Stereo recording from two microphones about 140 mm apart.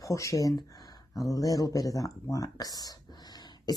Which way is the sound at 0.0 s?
25° left (ahead or behind).